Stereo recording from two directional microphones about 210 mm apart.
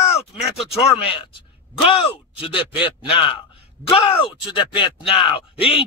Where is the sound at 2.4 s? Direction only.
25° left (ahead or behind).